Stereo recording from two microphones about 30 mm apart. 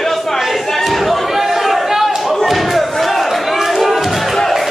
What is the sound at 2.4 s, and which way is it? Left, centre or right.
Thump, centre.